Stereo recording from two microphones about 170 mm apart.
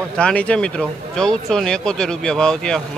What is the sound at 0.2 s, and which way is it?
Speech, 5° left (ahead or behind).